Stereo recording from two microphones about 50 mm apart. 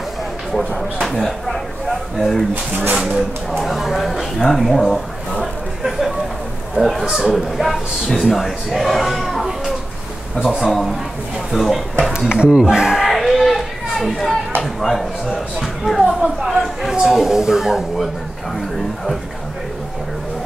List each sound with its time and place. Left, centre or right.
1.0 s a man's voice: centre
5.4 s a sound: centre
6.7 s a man's voice: centre
12.1 s speech: centre
13.1 s chatter: centre
14.6 s a man's voice: centre